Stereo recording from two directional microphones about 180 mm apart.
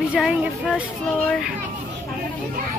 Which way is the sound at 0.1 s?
5° right (ahead or behind).